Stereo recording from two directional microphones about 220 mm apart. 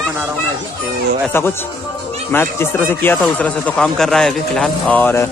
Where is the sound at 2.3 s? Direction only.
10° left (ahead or behind).